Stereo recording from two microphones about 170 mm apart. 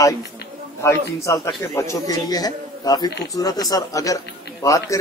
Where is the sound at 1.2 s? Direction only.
20° left (ahead or behind).